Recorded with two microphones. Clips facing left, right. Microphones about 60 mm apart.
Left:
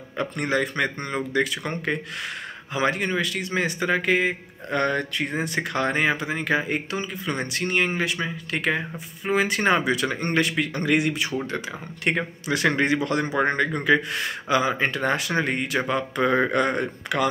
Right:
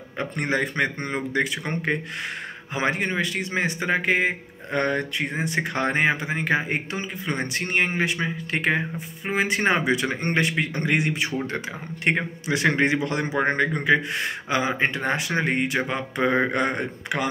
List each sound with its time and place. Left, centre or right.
0.2 s speech: right
4.6 s speech: centre